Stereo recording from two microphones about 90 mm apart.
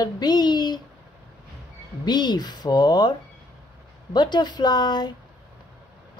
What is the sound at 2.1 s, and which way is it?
Speech, 55° left (ahead or behind).